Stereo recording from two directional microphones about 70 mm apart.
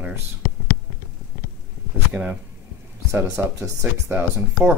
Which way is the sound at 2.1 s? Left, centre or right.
Centre.